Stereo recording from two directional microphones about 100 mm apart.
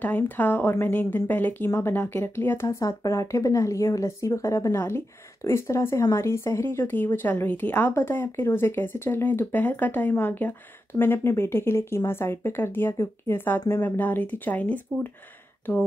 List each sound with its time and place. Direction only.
0.0 s a woman's voice: 15° left (ahead or behind)